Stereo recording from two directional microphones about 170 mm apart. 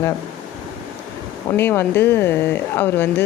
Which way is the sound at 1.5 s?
15° left (ahead or behind).